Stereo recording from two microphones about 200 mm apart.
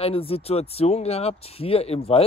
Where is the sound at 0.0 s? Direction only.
30° left (ahead or behind).